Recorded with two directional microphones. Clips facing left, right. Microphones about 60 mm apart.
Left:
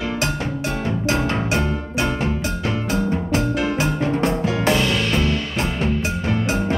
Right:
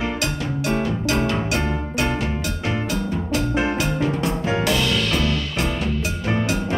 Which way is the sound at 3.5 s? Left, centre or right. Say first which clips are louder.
Even; right.